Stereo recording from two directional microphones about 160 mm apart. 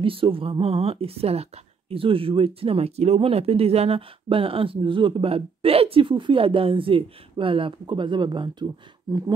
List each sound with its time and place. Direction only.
0.0 s speech: 35° right (ahead or behind)